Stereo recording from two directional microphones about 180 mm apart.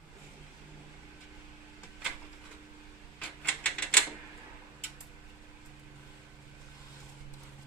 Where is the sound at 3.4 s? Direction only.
5° left (ahead or behind).